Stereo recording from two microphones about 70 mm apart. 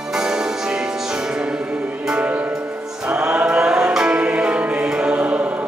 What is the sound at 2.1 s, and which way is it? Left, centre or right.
Music, centre.